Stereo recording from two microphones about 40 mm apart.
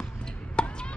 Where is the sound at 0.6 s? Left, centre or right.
Left.